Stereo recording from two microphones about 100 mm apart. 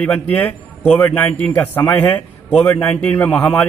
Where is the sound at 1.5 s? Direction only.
25° left (ahead or behind).